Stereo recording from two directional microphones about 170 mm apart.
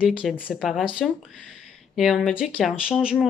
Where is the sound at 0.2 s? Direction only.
5° right (ahead or behind).